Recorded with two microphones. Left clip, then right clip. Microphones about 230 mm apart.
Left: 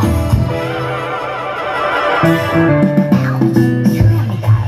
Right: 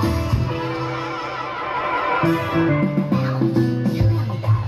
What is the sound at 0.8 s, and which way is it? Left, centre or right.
Music, left.